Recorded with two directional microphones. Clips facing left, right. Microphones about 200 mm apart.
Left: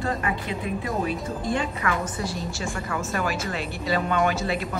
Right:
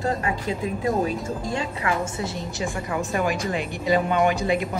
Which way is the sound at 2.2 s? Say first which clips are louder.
Right 1 dB; 20° right (ahead or behind).